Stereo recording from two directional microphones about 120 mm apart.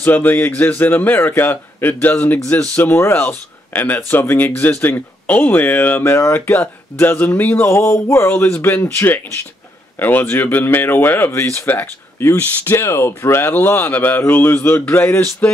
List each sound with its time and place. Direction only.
0.0 s a man's voice: 15° left (ahead or behind)